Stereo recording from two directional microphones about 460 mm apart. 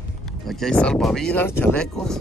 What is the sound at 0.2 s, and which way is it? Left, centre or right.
Speech, centre.